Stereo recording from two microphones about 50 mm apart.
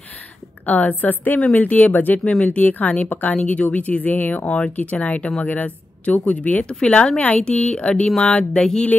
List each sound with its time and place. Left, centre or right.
0.7 s speech: left
4.5 s speech: left
4.7 s speech: left